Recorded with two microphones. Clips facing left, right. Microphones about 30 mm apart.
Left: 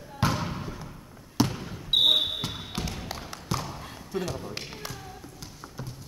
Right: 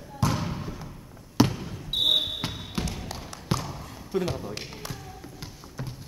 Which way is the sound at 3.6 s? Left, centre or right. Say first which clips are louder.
Even; centre.